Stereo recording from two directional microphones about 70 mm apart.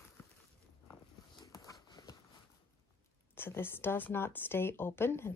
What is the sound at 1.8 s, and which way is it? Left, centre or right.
Walk, left.